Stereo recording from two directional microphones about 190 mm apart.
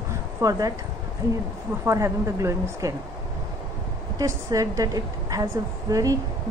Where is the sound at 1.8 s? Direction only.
15° right (ahead or behind).